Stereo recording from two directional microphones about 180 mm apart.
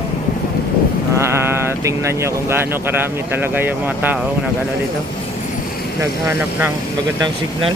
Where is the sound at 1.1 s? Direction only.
15° right (ahead or behind).